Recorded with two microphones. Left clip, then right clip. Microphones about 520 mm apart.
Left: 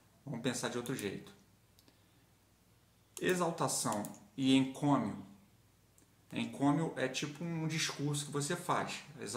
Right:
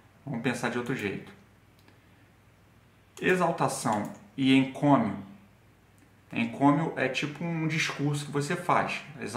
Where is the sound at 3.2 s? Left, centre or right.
Left.